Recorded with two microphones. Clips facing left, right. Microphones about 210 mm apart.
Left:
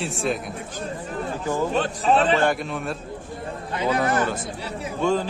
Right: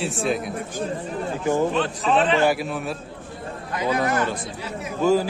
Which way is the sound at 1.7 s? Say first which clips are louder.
Even; 40° left (ahead or behind).